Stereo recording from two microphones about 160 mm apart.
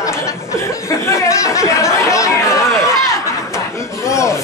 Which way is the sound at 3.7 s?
20° left (ahead or behind).